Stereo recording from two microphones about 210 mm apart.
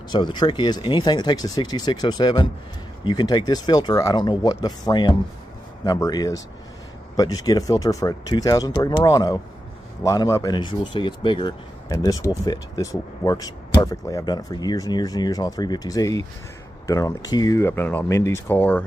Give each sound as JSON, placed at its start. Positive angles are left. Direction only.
{"t": 0.1, "sound": "speech", "side_deg": 20}